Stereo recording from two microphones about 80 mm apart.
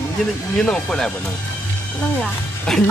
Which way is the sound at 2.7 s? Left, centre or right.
Centre.